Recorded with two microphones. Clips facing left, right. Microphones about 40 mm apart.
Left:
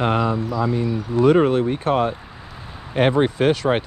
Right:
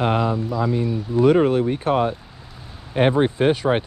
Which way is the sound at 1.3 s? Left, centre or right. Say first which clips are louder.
Left 1 dB; centre.